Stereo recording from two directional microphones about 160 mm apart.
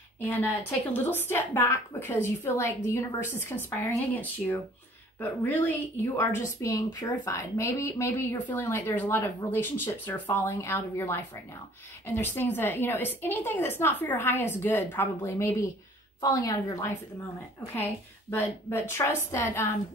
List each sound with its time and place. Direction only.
0.2 s a woman's voice: 10° left (ahead or behind)
12.2 s a woman's voice: 15° left (ahead or behind)
18.3 s a woman's voice: 15° left (ahead or behind)